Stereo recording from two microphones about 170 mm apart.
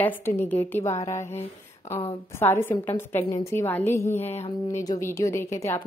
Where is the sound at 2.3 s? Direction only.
15° left (ahead or behind).